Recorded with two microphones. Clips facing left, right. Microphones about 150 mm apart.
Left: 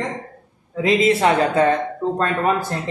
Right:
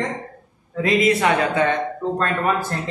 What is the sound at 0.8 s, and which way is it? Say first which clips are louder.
Speech: left 1 dB; 25° left (ahead or behind).